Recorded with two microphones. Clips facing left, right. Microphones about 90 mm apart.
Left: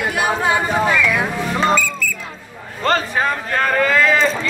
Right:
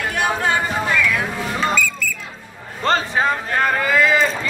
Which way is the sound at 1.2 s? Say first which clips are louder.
Left 3 dB; 20° left (ahead or behind).